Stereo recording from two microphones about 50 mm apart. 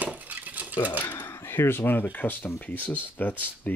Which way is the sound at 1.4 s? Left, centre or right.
Left.